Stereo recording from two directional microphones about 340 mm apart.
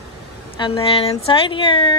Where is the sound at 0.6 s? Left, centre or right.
Centre.